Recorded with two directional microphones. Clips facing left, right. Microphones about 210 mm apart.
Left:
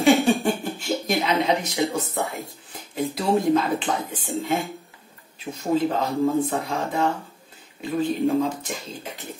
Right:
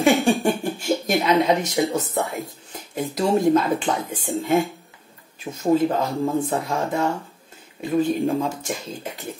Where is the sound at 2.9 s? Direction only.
45° right (ahead or behind).